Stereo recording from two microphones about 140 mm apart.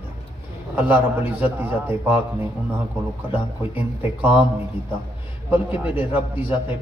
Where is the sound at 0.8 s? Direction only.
10° right (ahead or behind).